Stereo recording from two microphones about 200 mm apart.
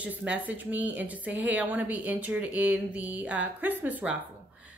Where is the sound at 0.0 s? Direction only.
5° right (ahead or behind).